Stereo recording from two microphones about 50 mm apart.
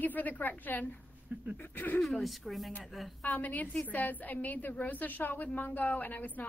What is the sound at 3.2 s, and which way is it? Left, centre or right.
A woman's voice, left.